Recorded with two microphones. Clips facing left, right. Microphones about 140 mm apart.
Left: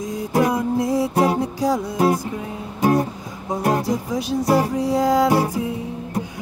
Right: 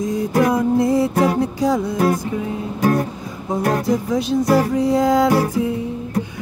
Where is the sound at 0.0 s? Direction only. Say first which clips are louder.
Right 6 dB; 75° right (ahead or behind).